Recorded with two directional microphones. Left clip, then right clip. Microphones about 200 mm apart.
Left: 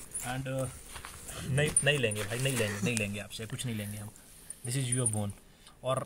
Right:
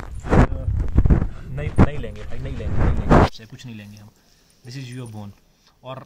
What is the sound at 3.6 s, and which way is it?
Speech, 35° left (ahead or behind).